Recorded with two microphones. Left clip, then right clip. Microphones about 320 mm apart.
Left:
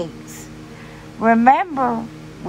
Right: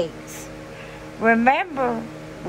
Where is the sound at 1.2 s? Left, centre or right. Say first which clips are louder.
Left 4 dB; centre.